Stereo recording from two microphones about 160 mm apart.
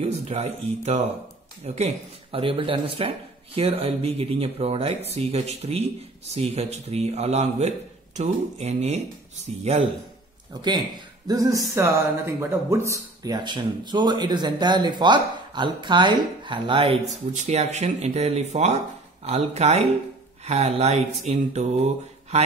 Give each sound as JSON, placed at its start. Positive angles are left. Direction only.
{"t": 0.0, "sound": "a man's voice", "side_deg": -45}
{"t": 11.2, "sound": "a man's voice", "side_deg": -20}